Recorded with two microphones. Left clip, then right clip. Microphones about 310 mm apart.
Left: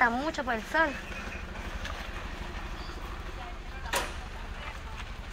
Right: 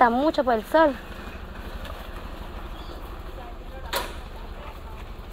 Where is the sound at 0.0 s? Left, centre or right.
Centre.